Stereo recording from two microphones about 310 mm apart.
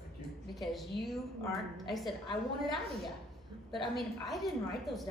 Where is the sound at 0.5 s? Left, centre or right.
Centre.